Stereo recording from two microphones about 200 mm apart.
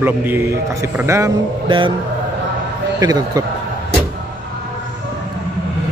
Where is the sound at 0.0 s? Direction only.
10° right (ahead or behind).